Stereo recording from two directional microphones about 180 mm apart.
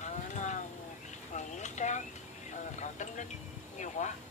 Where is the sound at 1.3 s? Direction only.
40° left (ahead or behind).